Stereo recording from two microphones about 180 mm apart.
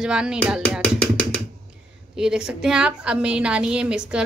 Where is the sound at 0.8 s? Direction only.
5° left (ahead or behind).